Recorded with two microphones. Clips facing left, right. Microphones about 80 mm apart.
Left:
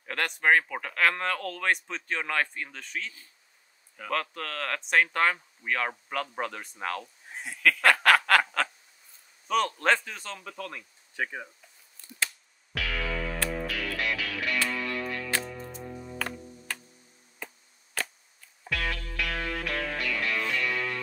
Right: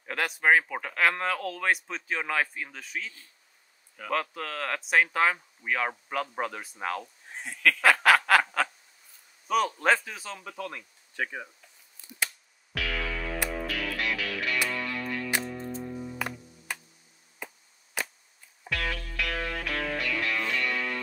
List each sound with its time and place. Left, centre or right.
0.0 s speech: centre
7.3 s snicker: centre
9.5 s speech: centre
12.0 s a sound: centre
12.7 s music: centre
16.0 s music: centre
17.4 s chop: centre
18.6 s music: centre